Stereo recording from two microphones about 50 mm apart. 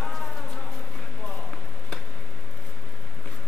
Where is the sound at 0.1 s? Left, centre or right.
Centre.